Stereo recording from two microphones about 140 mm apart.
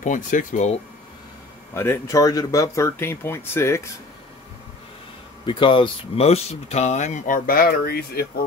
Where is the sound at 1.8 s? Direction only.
20° left (ahead or behind).